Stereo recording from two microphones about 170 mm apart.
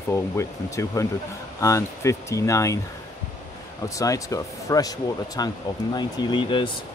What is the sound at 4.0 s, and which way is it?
Speech, 20° left (ahead or behind).